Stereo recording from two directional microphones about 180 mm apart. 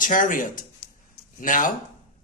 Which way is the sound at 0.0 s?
50° left (ahead or behind).